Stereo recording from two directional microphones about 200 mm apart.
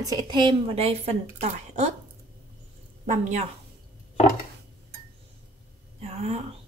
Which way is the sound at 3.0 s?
35° right (ahead or behind).